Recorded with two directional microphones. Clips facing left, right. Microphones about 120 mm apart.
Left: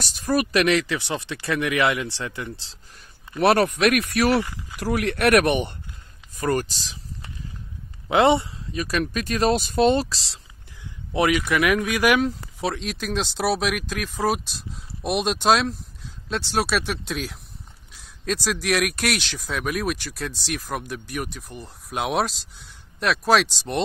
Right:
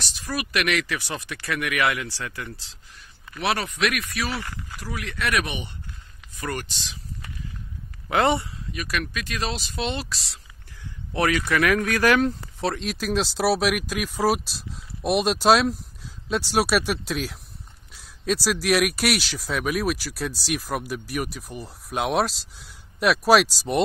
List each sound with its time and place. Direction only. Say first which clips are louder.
0.0 s speech: left 8 dB; 45° left (ahead or behind); by 2.8 s 30° left (ahead or behind)
3.3 s speech: left 7 dB; 50° left (ahead or behind)
6.3 s speech: left 7 dB; 40° left (ahead or behind)
8.1 s speech: left 4 dB; 20° left (ahead or behind); by 10.1 s 45° left (ahead or behind)
10.1 s speech: even; 30° left (ahead or behind)
11.1 s speech: left 2 dB; 15° left (ahead or behind)
12.2 s speech: right 1 dB; centre (ahead or behind)